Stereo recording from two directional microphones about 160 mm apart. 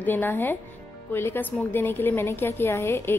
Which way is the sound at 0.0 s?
10° left (ahead or behind).